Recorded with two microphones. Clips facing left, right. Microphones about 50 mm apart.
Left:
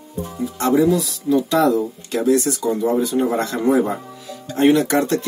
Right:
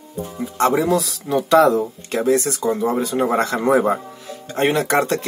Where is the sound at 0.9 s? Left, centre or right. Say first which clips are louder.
Left 2 dB; right.